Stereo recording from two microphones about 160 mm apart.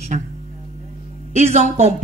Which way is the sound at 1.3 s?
45° right (ahead or behind).